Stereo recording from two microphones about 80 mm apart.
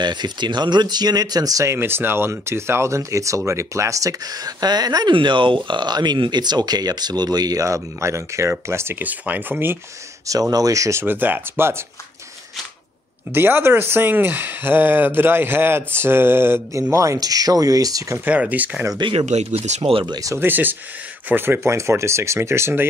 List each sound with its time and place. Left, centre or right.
0.0 s speech: right
1.7 s speech: right
5.1 s speech: right
7.6 s speech: right
10.5 s speech: right
13.3 s speech: right
16.9 s speech: right
18.1 s speech: right
19.8 s speech: right
20.3 s speech: right